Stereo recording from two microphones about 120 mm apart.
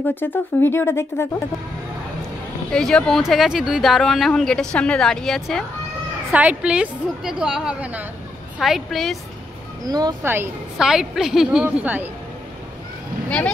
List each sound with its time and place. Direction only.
0.0 s speech: 15° left (ahead or behind)
2.7 s speech: 5° left (ahead or behind)
6.3 s a woman's voice: 10° right (ahead or behind)
9.8 s speech: 35° right (ahead or behind)
10.2 s a woman's voice: 20° right (ahead or behind)
10.8 s speech: 5° right (ahead or behind)